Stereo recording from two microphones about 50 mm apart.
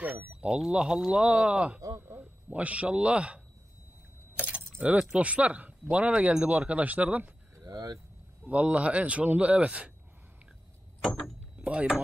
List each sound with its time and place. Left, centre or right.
0.3 s a sound: right
0.6 s speech: centre
1.9 s a sound: right
2.1 s speech: right
4.4 s keys jangling: right
5.1 s speech: right
8.5 s speech: right
11.0 s a sound: centre
11.5 s speech: right